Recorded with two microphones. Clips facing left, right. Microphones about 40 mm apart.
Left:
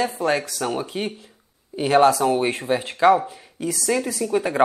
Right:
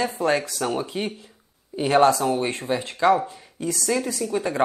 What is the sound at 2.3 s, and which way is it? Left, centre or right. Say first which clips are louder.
Speech: left 3 dB; centre.